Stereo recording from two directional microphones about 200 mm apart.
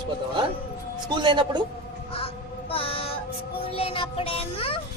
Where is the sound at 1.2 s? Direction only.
25° right (ahead or behind).